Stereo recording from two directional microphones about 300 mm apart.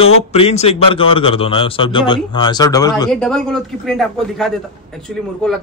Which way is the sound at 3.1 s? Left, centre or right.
Centre.